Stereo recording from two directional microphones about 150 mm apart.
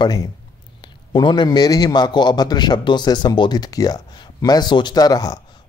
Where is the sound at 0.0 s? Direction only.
25° left (ahead or behind).